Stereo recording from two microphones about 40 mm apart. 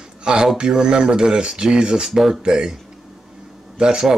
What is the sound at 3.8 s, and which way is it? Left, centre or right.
Speech, centre.